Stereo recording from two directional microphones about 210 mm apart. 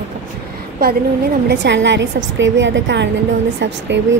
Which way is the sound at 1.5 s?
55° right (ahead or behind).